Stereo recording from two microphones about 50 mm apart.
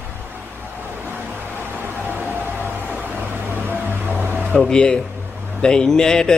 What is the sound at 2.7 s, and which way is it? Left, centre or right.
Music, right.